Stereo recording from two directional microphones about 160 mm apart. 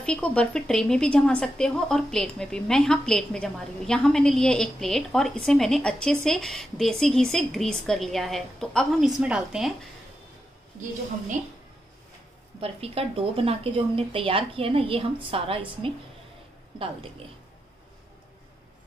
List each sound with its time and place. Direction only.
0.0 s a woman's voice: 5° left (ahead or behind)
12.5 s speech: 35° right (ahead or behind)